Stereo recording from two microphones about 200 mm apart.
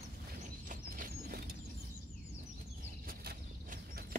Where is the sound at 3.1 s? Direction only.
50° right (ahead or behind).